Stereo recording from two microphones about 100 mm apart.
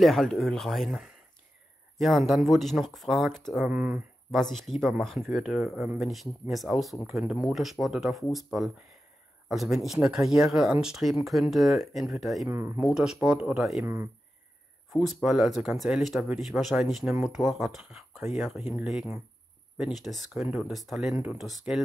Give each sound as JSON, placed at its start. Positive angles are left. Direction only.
{"t": 0.0, "sound": "speech", "side_deg": 0}
{"t": 12.4, "sound": "speech", "side_deg": -25}
{"t": 12.8, "sound": "speech", "side_deg": -5}
{"t": 14.9, "sound": "speech", "side_deg": -5}
{"t": 19.8, "sound": "speech", "side_deg": 0}